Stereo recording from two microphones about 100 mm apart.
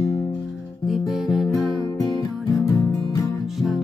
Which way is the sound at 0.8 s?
Centre (ahead or behind).